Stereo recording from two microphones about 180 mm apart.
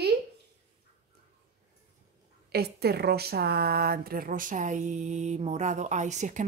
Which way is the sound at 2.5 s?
65° right (ahead or behind).